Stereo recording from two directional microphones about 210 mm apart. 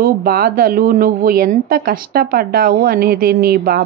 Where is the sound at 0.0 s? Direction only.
45° right (ahead or behind).